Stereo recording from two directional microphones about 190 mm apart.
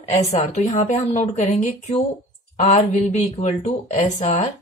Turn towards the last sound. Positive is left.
turn(degrees=35)  # may be behind; listen again after turning